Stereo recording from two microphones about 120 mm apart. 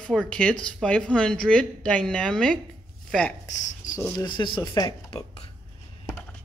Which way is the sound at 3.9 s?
25° left (ahead or behind).